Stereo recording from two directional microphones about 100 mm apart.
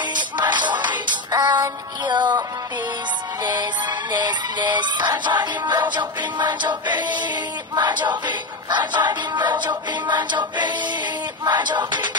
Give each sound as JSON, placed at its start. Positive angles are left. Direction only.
{"t": 0.1, "sound": "music", "side_deg": -50}
{"t": 4.1, "sound": "music", "side_deg": -45}